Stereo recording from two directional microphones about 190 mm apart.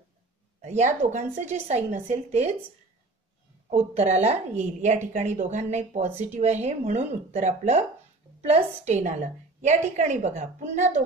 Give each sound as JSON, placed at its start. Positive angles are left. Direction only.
{"t": 0.6, "sound": "a woman's voice", "side_deg": -35}
{"t": 3.7, "sound": "a woman's voice", "side_deg": -35}